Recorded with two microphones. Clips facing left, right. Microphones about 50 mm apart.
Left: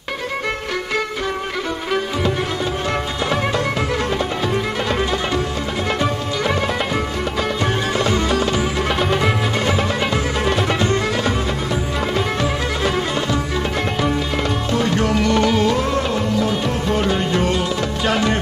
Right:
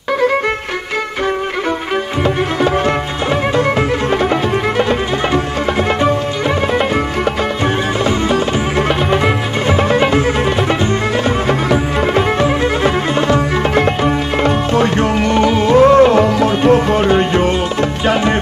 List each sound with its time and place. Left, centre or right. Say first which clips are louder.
8.0 s music: right 3 dB; centre
11.4 s music: right 8 dB; right
13.3 s music: right 7 dB; right
15.7 s music: right 12 dB; right
16.6 s music: right 8 dB; right
18.0 s music: right 4 dB; right